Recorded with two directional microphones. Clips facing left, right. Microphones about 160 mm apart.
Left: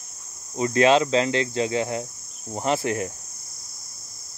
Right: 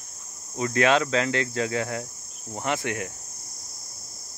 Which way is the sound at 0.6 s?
30° left (ahead or behind).